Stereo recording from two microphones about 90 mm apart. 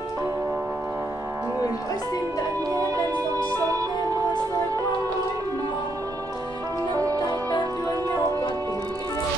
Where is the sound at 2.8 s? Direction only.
40° right (ahead or behind).